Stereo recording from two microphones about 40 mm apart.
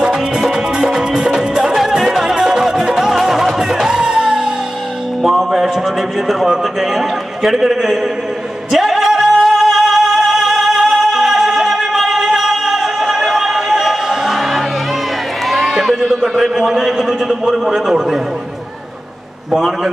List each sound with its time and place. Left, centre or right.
0.0 s music: centre
5.2 s music: centre
6.2 s a sound: centre
8.7 s music: centre
15.5 s run: centre
16.3 s a sound: centre
19.5 s a man's voice: centre